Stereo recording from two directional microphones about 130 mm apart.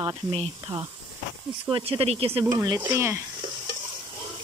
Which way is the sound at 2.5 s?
30° right (ahead or behind).